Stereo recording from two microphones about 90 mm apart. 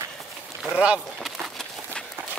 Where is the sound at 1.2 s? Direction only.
5° left (ahead or behind).